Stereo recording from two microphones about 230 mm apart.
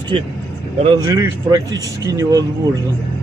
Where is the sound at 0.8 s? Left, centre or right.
Centre.